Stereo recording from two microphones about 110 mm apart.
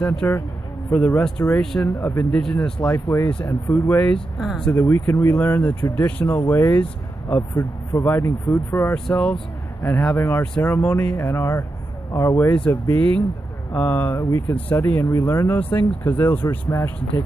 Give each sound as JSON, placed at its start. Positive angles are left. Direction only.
{"t": 0.0, "sound": "speech", "side_deg": 10}
{"t": 2.0, "sound": "speech", "side_deg": 20}
{"t": 2.3, "sound": "speech", "side_deg": 5}
{"t": 3.4, "sound": "speech", "side_deg": 20}
{"t": 4.4, "sound": "speech", "side_deg": 0}
{"t": 4.6, "sound": "speech", "side_deg": 20}
{"t": 8.9, "sound": "speech", "side_deg": 5}
{"t": 9.8, "sound": "speech", "side_deg": 20}